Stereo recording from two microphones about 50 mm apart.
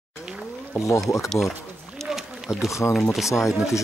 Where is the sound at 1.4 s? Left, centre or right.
Centre.